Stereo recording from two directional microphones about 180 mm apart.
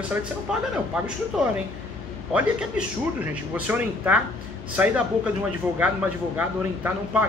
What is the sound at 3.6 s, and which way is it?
Speech, 10° right (ahead or behind).